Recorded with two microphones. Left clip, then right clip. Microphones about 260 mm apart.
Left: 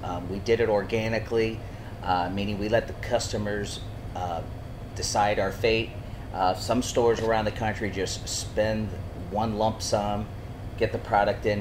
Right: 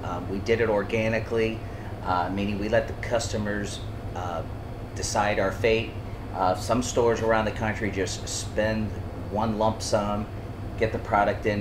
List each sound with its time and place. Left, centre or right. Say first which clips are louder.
0.0 s speech: right 1 dB; left